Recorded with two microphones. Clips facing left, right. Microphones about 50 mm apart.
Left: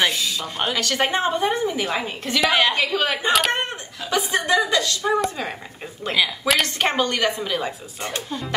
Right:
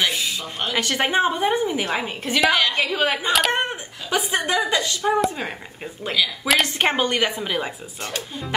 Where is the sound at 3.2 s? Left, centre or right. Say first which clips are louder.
Left 1 dB; centre.